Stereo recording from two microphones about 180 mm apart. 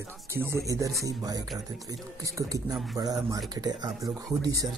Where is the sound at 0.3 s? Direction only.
15° right (ahead or behind).